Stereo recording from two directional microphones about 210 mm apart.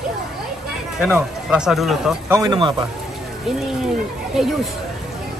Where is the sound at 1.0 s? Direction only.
5° right (ahead or behind).